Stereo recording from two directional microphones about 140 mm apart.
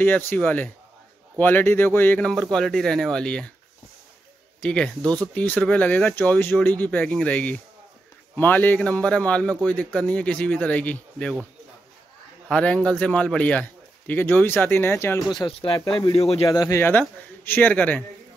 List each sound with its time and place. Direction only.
0.3 s a man's voice: 10° left (ahead or behind)
4.6 s a man's voice: 5° left (ahead or behind)
12.4 s a man's voice: 5° left (ahead or behind)
15.3 s speech: 35° left (ahead or behind)
16.4 s a man's voice: 20° left (ahead or behind)